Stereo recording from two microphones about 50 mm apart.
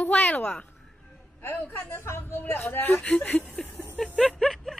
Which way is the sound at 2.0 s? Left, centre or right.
Left.